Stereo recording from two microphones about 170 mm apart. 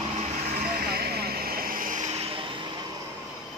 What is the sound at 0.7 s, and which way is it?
Vehicle, 65° right (ahead or behind).